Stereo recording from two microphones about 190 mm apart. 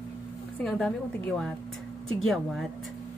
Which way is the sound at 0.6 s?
5° left (ahead or behind).